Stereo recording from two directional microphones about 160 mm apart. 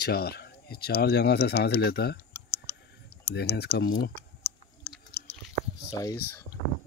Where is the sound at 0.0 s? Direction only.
80° left.